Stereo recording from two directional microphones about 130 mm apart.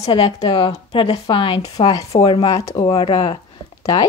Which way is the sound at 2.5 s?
25° left (ahead or behind).